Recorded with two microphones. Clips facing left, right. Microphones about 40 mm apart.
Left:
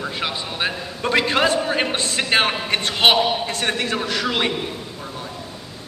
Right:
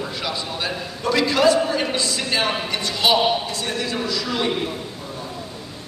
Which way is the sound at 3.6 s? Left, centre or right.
Left.